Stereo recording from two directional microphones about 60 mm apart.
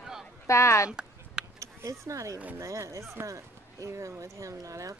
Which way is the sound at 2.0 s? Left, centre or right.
Right.